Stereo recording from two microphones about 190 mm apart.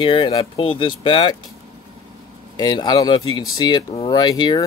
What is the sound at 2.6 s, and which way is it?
Speech, 20° left (ahead or behind).